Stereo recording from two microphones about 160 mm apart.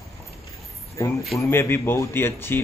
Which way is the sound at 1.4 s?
15° left (ahead or behind).